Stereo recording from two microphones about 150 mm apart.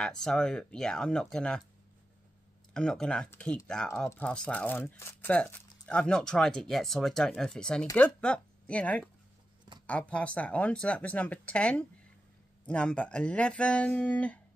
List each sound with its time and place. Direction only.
0.0 s speech: 5° left (ahead or behind)
2.7 s speech: 5° left (ahead or behind)